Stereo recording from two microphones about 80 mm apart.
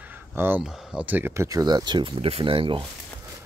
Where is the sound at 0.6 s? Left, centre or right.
Centre.